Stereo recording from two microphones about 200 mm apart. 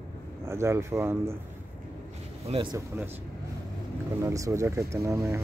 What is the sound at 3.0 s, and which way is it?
Speech, 10° right (ahead or behind).